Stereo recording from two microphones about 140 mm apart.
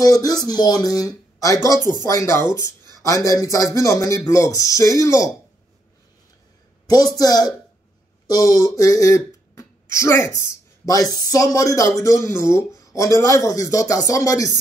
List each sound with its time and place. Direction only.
0.0 s speech: 25° left (ahead or behind)
6.9 s speech: 30° left (ahead or behind)